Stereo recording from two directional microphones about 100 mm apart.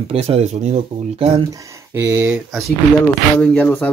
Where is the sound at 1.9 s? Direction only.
35° right (ahead or behind).